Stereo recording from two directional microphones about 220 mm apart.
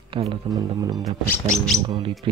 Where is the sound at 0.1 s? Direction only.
25° right (ahead or behind).